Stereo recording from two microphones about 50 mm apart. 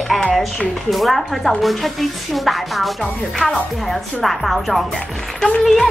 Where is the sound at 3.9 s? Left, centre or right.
Centre.